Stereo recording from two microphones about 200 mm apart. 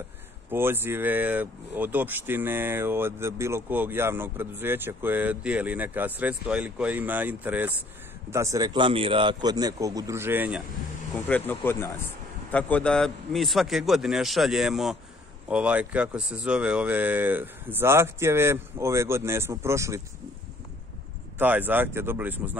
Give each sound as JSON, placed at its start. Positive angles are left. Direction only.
{"t": 0.5, "sound": "a man's voice", "side_deg": -10}
{"t": 11.1, "sound": "a man's voice", "side_deg": 10}
{"t": 21.4, "sound": "speech", "side_deg": -10}